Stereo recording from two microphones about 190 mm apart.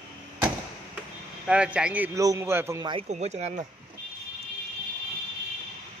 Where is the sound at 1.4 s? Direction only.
5° right (ahead or behind).